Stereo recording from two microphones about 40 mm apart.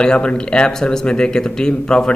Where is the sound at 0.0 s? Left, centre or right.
Centre.